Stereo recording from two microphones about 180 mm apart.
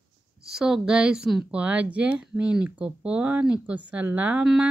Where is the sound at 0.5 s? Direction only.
Centre (ahead or behind).